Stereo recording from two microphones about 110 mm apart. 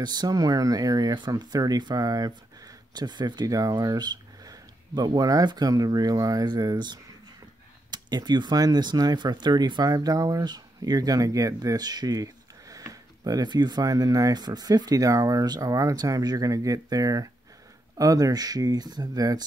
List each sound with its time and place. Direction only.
0.0 s speech: 40° right (ahead or behind)